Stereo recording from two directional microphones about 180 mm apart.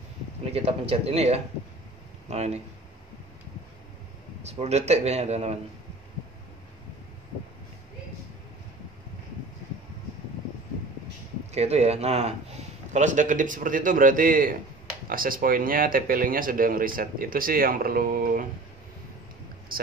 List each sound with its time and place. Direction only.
0.5 s a man's voice: 30° right (ahead or behind)
4.4 s a man's voice: 35° right (ahead or behind)
11.5 s speech: 35° right (ahead or behind); by 18.4 s 55° right (ahead or behind)
19.7 s speech: 55° right (ahead or behind)